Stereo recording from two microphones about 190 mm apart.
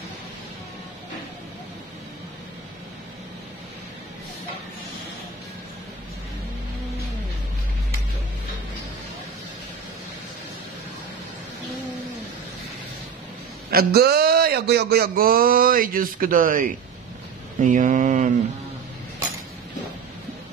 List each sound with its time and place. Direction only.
13.7 s speech: 55° right (ahead or behind)